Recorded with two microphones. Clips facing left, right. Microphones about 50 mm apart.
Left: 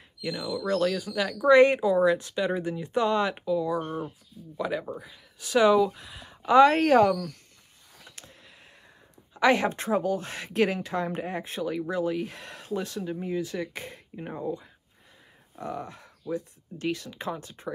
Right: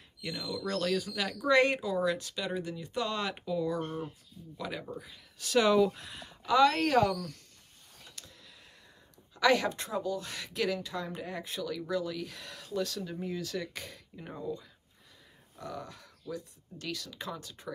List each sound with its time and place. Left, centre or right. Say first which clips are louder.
0.2 s speech: left 6 dB; left
3.4 s speech: left 5 dB; centre
6.2 s speech: left 7 dB; left
9.3 s speech: left 4 dB; left